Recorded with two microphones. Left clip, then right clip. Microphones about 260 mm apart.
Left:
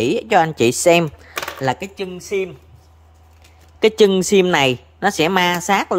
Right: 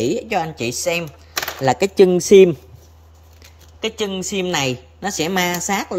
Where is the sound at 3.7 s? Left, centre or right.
Centre.